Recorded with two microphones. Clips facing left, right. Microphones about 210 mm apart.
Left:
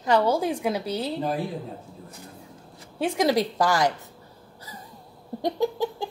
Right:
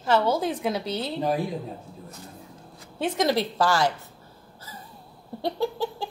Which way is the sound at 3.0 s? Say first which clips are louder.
Left 2 dB; 10° left (ahead or behind).